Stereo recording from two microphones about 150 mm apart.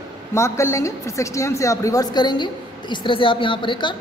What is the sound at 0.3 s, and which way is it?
A woman's voice, 20° left (ahead or behind).